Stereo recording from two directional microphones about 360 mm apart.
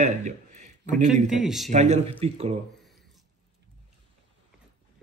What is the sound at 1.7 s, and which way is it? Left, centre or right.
Speech, centre.